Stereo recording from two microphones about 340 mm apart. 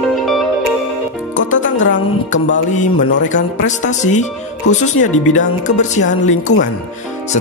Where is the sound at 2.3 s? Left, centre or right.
Left.